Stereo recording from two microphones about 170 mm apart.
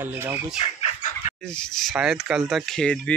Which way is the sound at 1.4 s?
5° left (ahead or behind).